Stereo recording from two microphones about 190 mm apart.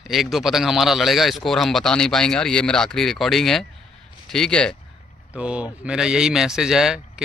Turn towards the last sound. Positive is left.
turn(degrees=0)  # may be behind; listen again after turning